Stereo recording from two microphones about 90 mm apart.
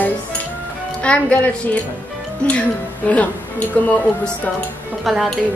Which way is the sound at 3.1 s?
15° left (ahead or behind).